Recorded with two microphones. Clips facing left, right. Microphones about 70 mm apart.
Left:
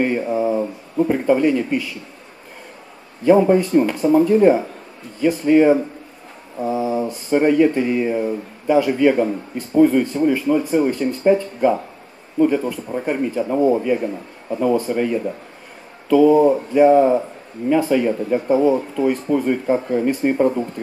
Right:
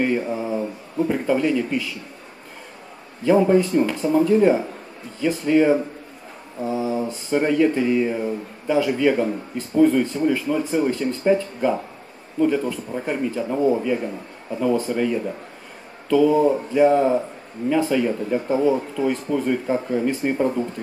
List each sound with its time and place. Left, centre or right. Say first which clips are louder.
0.0 s mantra: left 3 dB; centre
0.9 s speech: left 4 dB; centre
3.3 s speech: left 3 dB; centre
6.6 s mantra: left 3 dB; centre
7.2 s speech: left 4 dB; centre